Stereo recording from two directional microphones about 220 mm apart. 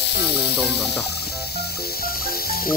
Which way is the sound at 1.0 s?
45° left (ahead or behind).